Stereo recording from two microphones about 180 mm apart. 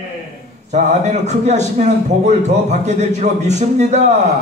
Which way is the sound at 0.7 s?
40° right (ahead or behind).